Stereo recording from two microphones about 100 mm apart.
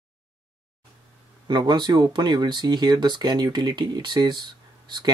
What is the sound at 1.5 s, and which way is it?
Speech, 50° right (ahead or behind).